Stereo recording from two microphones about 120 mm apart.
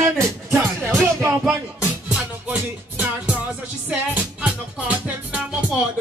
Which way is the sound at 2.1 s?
10° right (ahead or behind).